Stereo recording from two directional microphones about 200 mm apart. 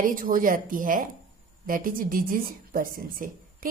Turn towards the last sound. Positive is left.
turn(degrees=-45)  # may be behind; listen again after turning